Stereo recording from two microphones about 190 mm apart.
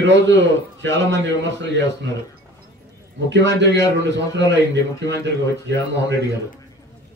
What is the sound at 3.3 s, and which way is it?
Speech, 70° right (ahead or behind).